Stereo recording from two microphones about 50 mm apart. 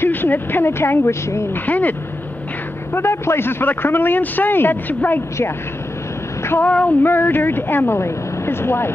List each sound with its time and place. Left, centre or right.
0.0 s speech: left
1.5 s speech: left
2.9 s a man's voice: left
6.7 s female singing: left
7.0 s a man's voice: left